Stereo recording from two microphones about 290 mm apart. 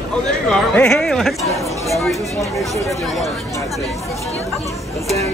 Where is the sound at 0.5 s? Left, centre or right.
Centre.